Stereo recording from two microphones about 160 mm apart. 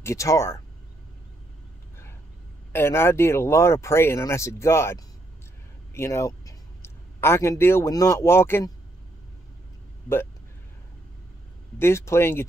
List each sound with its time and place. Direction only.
0.0 s speech: 20° left (ahead or behind)
2.7 s a man's voice: 15° left (ahead or behind)
11.8 s speech: 15° left (ahead or behind)